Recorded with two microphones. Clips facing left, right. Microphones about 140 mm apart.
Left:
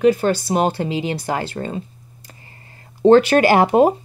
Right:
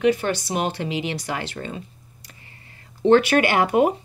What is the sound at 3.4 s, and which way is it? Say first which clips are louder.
Speech: left 5 dB; 35° left (ahead or behind).